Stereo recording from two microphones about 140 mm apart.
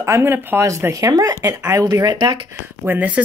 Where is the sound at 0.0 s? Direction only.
20° right (ahead or behind).